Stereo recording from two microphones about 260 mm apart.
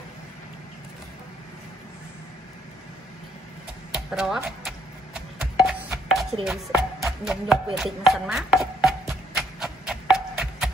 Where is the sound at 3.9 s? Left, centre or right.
Centre.